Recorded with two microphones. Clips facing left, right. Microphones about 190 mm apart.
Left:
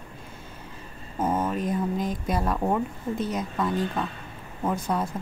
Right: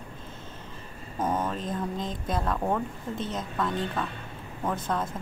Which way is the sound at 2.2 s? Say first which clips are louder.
Left 1 dB; 10° left (ahead or behind).